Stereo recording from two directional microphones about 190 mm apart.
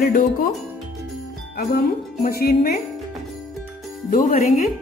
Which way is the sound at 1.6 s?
55° left (ahead or behind).